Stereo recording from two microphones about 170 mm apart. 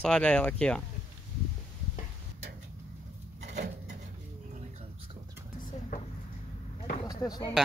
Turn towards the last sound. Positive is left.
turn(degrees=25)  # may be behind; listen again after turning